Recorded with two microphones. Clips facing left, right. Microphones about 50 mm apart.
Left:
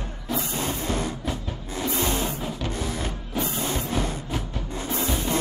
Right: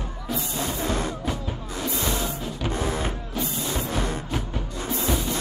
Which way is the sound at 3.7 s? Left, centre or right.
Right.